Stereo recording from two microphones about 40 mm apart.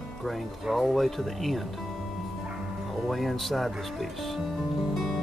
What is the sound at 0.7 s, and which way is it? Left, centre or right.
Speech, centre.